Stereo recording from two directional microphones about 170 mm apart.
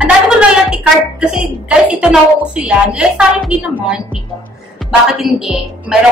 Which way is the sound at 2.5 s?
5° right (ahead or behind).